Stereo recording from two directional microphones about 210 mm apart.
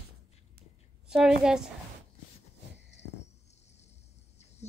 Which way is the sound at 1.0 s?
5° right (ahead or behind).